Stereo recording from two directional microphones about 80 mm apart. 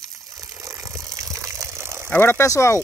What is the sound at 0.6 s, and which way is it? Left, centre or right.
Water, right.